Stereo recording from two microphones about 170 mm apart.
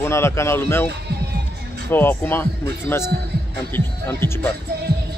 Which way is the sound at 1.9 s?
10° left (ahead or behind).